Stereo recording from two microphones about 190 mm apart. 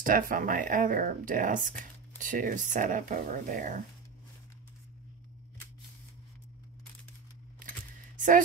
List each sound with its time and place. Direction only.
0.0 s speech: 45° right (ahead or behind)